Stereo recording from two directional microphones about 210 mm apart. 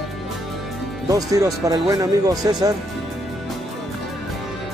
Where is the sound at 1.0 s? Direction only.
15° right (ahead or behind).